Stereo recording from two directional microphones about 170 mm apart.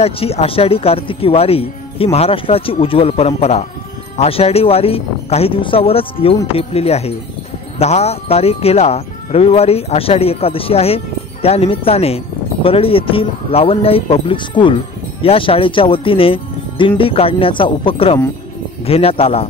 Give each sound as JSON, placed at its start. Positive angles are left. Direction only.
{"t": 0.0, "sound": "speech", "side_deg": 35}